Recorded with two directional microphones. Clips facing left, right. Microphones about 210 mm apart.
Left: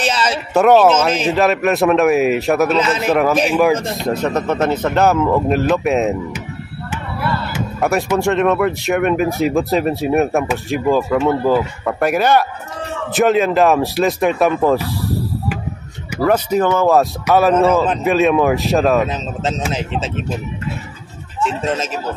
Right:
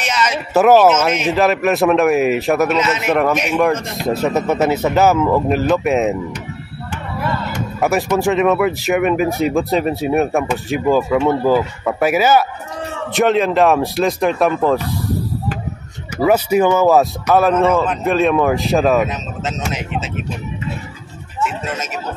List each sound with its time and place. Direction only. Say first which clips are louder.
0.0 s speech: left 1 dB; 30° left (ahead or behind)
0.5 s speech: even; centre (ahead or behind)
2.8 s a man's voice: left 1 dB; 30° left (ahead or behind)
3.1 s speech: left 2 dB; centre (ahead or behind)
7.5 s speech: right 1 dB; 5° left (ahead or behind)
16.2 s speech: right 2 dB; 10° right (ahead or behind)
21.5 s speech: left 8 dB; 30° left (ahead or behind)